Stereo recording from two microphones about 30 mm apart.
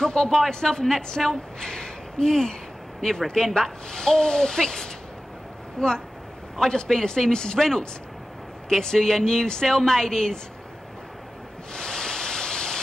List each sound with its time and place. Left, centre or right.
0.0 s speech: left
11.7 s waves: left